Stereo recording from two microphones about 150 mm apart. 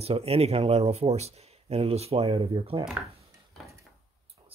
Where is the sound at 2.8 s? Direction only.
5° right (ahead or behind).